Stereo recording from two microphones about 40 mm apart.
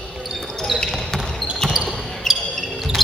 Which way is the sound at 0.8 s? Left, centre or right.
Centre.